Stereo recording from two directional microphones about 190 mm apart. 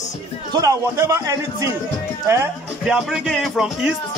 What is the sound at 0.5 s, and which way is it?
A man's voice, 15° right (ahead or behind).